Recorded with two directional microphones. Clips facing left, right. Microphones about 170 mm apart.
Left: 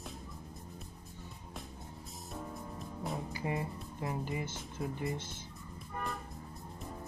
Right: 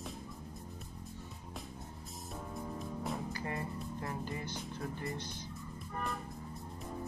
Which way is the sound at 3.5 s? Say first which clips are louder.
Left 2 dB; 15° left (ahead or behind).